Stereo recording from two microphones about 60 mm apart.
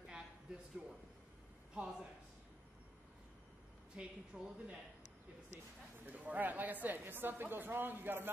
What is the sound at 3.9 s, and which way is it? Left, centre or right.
Speech, centre.